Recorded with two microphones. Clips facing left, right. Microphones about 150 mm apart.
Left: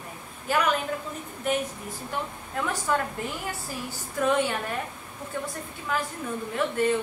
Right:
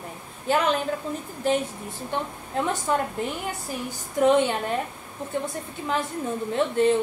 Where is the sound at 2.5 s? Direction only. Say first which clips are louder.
Right 3 dB; 25° right (ahead or behind).